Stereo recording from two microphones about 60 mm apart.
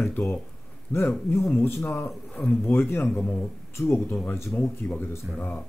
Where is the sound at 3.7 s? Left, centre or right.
Left.